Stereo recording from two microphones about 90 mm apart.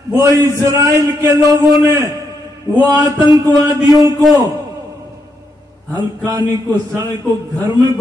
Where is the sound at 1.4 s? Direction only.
45° left (ahead or behind).